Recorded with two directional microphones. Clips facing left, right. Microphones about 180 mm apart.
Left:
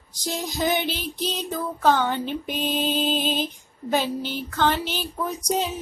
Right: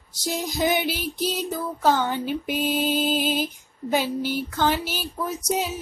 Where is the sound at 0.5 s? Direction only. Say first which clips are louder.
Right 1 dB; 15° right (ahead or behind).